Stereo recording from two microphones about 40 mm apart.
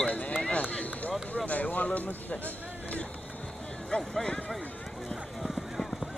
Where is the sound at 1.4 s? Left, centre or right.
Left.